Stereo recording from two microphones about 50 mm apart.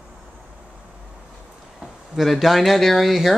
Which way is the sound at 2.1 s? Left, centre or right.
Centre.